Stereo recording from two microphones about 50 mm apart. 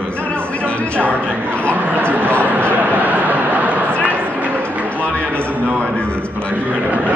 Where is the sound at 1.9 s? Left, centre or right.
Right.